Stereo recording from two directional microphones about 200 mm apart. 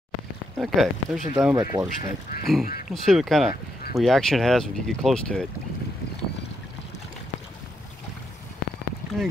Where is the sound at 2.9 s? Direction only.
Centre (ahead or behind).